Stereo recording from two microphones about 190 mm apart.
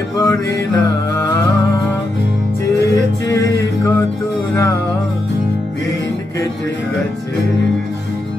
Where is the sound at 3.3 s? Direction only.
15° left (ahead or behind).